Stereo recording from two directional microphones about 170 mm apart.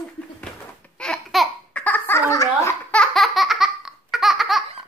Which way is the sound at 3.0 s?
Centre (ahead or behind).